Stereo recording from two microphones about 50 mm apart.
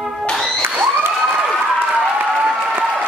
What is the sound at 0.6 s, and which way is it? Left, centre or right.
Applause, right.